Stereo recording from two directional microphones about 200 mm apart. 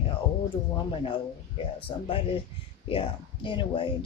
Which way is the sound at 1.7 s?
25° left (ahead or behind).